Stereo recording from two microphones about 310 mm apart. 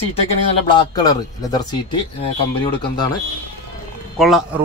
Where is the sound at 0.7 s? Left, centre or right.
Centre.